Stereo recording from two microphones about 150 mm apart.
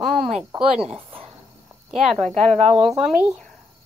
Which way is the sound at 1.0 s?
40° right (ahead or behind).